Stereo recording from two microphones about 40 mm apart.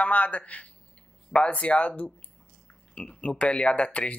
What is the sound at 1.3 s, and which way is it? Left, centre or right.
Speech, left.